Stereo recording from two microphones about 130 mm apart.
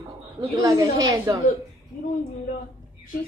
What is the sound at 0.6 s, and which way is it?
Speech, 25° right (ahead or behind).